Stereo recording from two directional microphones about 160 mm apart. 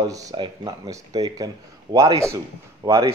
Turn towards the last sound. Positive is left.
turn(degrees=-20)  # may be behind; listen again after turning